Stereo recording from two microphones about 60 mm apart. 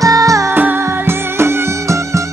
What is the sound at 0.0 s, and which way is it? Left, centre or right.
Music, right.